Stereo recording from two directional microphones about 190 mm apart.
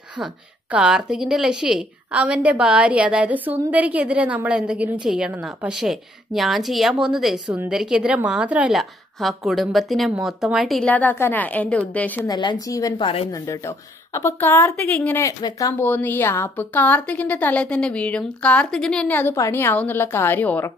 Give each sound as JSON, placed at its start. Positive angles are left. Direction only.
{"t": 0.2, "sound": "a woman's voice", "side_deg": -5}
{"t": 12.3, "sound": "a woman's voice", "side_deg": 20}
{"t": 13.3, "sound": "a woman's voice", "side_deg": 15}